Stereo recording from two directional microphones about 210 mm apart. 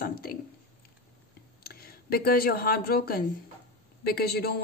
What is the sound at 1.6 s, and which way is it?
Speech, 45° left (ahead or behind).